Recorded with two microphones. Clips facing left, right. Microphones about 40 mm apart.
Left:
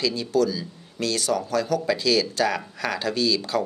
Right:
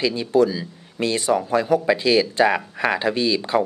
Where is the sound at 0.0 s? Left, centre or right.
Right.